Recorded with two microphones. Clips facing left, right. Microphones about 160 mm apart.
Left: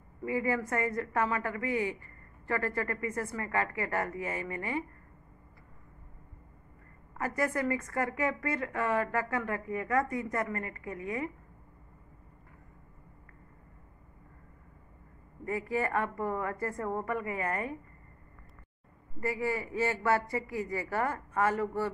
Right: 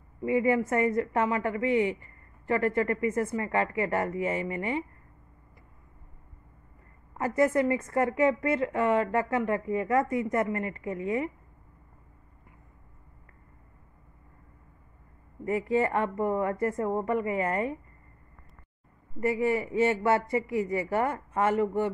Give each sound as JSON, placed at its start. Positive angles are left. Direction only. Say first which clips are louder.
{"t": 0.2, "sound": "a woman's voice", "louder": "right 6 dB", "side_deg": -20}
{"t": 7.2, "sound": "a woman's voice", "louder": "right 7 dB", "side_deg": -25}
{"t": 15.4, "sound": "a woman's voice", "louder": "right 6 dB", "side_deg": -25}
{"t": 19.1, "sound": "a woman's voice", "louder": "right 6 dB", "side_deg": -25}